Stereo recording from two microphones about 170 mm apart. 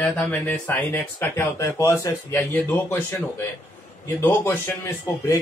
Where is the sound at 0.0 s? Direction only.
10° left (ahead or behind).